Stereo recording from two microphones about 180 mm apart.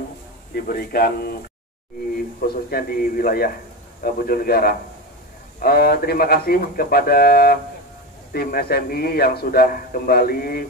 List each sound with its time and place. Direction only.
0.6 s a man's voice: 55° left (ahead or behind)
2.4 s a man's voice: 55° left (ahead or behind)